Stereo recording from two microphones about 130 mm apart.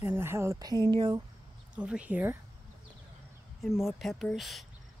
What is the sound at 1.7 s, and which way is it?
Speech, 10° right (ahead or behind).